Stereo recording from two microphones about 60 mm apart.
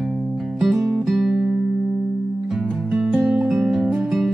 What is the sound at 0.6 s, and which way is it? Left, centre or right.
Music, centre.